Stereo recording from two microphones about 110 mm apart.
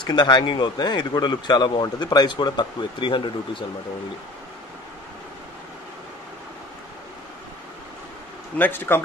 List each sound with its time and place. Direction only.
0.0 s speech: 45° left (ahead or behind)
8.5 s speech: 20° left (ahead or behind)